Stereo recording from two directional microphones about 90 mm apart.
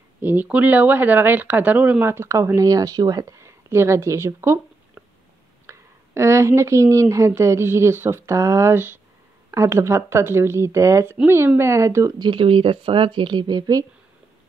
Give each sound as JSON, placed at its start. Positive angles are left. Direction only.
{"t": 0.2, "sound": "speech", "side_deg": -20}
{"t": 5.7, "sound": "speech", "side_deg": -30}
{"t": 12.2, "sound": "speech", "side_deg": -65}